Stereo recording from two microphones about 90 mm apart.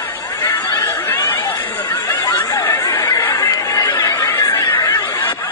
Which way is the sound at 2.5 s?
40° left (ahead or behind).